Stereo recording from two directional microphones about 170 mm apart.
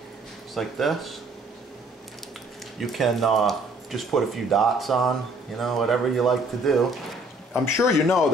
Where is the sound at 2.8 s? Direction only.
Centre (ahead or behind).